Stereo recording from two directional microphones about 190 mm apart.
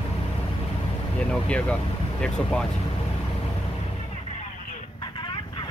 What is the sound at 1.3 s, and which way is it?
Speech, 5° left (ahead or behind).